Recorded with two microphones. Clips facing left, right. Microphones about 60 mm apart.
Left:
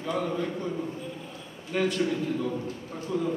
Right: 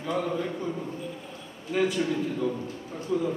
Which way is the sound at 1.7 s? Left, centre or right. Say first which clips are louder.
Right 1 dB; centre.